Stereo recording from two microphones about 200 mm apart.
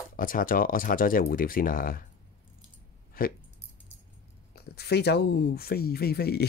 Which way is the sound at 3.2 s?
45° left (ahead or behind).